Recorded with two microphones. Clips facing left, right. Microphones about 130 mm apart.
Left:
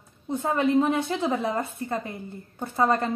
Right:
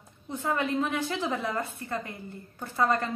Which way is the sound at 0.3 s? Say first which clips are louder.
Left 6 dB; 25° left (ahead or behind).